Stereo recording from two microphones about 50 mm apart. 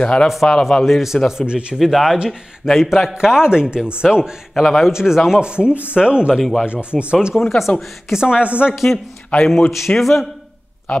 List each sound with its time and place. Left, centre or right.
0.0 s a man's voice: centre
0.3 s a man's voice: centre
1.4 s speech: centre
1.8 s a man's voice: centre
4.6 s speech: centre
5.4 s speech: centre
7.3 s a man's voice: centre
8.1 s speech: centre
8.9 s a man's voice: centre
9.7 s a man's voice: centre